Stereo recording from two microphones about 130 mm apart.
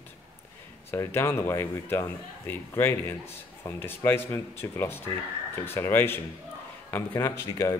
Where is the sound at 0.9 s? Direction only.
20° left (ahead or behind).